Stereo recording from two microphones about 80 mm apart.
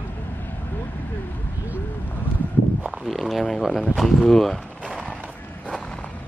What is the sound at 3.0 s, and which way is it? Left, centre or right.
Speech, centre.